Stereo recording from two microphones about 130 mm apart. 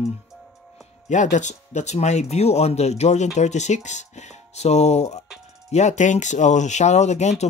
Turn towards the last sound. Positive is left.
turn(degrees=60)  # may be behind; listen again after turning